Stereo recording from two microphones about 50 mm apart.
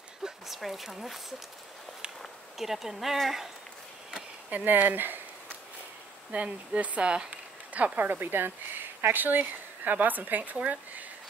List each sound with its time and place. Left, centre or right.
0.2 s speech: centre
2.6 s speech: centre
4.5 s speech: right
6.3 s speech: right